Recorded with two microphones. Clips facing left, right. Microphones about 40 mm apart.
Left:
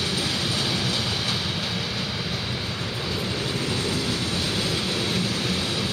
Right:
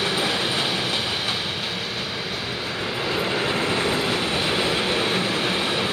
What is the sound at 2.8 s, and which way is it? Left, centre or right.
Vehicle, right.